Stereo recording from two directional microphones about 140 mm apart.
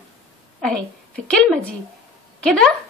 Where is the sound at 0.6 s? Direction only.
5° left (ahead or behind).